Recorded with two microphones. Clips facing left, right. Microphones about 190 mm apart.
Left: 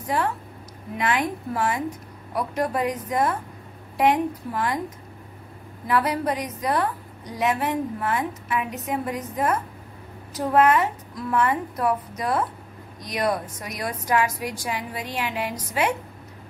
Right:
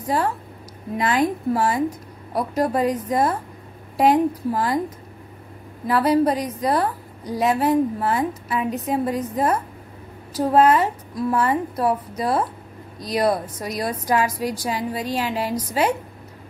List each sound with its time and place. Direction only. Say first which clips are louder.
0.9 s a woman's voice: right 4 dB; 35° right (ahead or behind)
5.9 s a woman's voice: right 5 dB; 35° right (ahead or behind)